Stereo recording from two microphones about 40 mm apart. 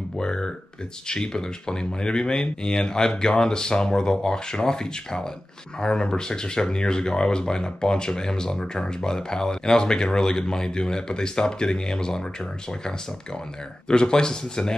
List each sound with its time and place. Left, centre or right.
0.2 s speech: left
13.8 s speech: left